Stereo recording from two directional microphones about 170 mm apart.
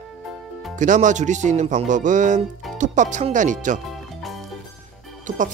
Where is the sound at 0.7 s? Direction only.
45° right (ahead or behind).